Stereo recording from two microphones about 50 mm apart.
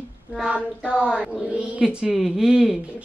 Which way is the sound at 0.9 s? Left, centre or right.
Centre.